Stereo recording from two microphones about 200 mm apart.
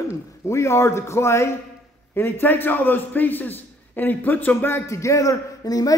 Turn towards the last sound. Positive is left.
turn(degrees=20)  # may be behind; listen again after turning